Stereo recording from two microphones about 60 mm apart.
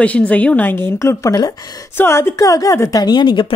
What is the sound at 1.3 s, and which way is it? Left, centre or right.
Speech, left.